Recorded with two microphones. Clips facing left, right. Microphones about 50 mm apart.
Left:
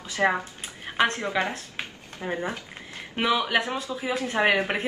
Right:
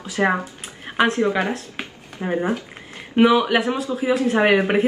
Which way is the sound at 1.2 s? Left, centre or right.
Centre.